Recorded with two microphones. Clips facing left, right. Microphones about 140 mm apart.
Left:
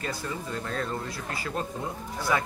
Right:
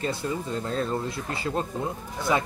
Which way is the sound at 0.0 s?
25° right (ahead or behind).